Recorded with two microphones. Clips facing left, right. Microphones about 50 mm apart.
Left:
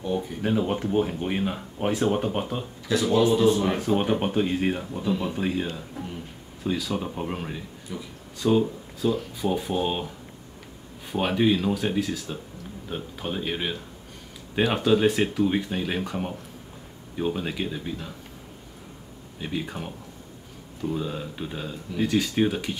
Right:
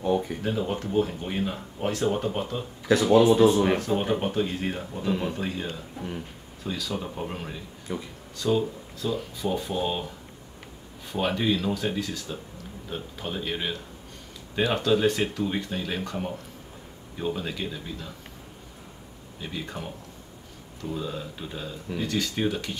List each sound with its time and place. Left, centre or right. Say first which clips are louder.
0.5 s speech: left 5 dB; centre
3.0 s speech: right 3 dB; right
3.8 s speech: left 2 dB; centre
7.9 s speech: right 3 dB; right
8.4 s speech: left 3 dB; centre
11.1 s speech: left 3 dB; centre
19.4 s speech: left 3 dB; centre